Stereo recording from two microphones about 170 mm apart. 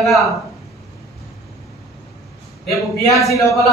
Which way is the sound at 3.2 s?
20° left (ahead or behind).